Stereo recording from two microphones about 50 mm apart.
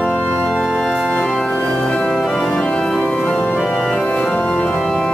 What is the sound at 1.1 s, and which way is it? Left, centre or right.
Organ, centre.